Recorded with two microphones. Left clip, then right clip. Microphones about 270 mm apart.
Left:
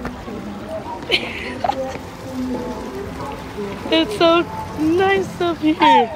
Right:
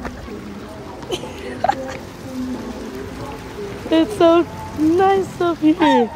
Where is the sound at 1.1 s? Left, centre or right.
Centre.